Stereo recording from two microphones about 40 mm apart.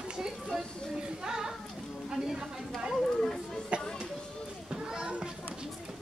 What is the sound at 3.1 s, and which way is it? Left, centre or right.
Speech, centre.